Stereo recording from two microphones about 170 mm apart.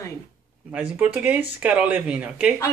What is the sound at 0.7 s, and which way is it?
Speech, 10° right (ahead or behind).